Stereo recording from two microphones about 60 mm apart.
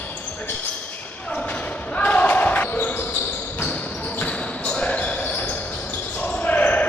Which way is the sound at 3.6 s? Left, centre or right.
Left.